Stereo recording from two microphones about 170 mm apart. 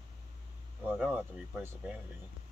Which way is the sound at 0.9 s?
5° right (ahead or behind).